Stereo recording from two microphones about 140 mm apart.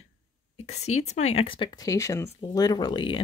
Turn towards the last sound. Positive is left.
turn(degrees=35)  # may be behind; listen again after turning